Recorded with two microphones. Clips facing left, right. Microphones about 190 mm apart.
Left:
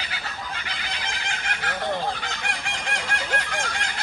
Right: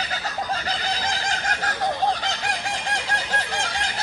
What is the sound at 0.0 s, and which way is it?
Neigh, 40° right (ahead or behind).